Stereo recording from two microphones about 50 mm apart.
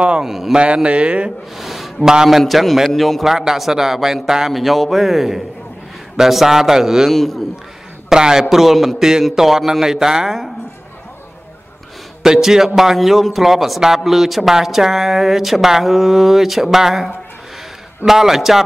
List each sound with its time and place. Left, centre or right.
0.2 s a man's voice: centre
0.8 s speech: right
1.6 s a sound: centre
2.2 s a man's voice: centre
7.1 s a man's voice: centre
8.1 s a man's voice: centre
12.2 s a man's voice: centre